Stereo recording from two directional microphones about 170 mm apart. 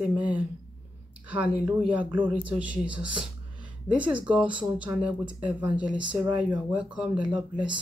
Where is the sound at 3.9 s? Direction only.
30° right (ahead or behind).